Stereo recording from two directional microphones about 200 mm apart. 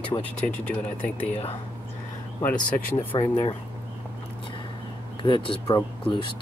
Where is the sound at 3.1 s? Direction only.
20° left (ahead or behind).